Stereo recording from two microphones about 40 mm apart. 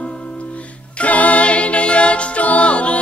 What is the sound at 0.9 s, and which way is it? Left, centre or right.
A capella, left.